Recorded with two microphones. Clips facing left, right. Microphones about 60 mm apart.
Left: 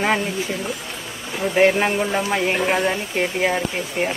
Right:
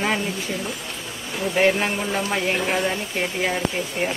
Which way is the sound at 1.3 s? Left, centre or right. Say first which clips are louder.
Left 3 dB; centre.